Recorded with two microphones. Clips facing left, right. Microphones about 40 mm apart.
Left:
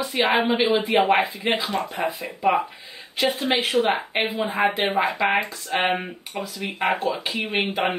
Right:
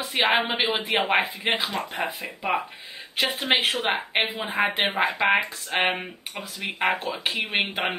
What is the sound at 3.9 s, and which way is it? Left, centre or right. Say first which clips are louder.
Speech: left 1 dB; centre.